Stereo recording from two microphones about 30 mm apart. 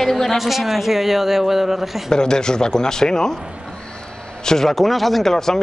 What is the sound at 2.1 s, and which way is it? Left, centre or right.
Speech, left.